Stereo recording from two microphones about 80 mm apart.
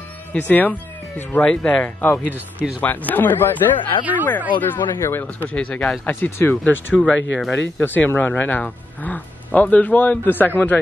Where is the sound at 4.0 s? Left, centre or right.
Right.